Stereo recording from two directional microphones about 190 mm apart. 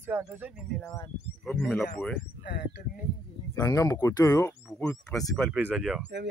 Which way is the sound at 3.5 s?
20° left (ahead or behind).